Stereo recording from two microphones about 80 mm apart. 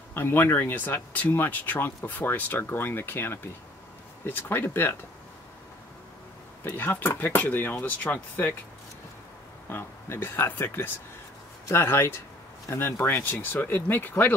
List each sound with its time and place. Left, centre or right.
0.1 s speech: left
6.6 s speech: left
9.7 s speech: left